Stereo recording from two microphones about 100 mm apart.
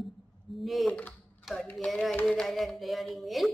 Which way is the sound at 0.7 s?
Centre (ahead or behind).